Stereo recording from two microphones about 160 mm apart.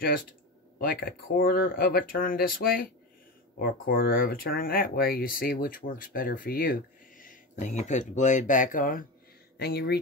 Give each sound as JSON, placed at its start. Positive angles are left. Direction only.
{"t": 0.7, "sound": "speech", "side_deg": 70}
{"t": 9.6, "sound": "speech", "side_deg": 80}